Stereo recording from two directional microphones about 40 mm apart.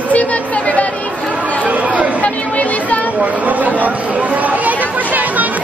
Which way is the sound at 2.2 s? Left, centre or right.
Left.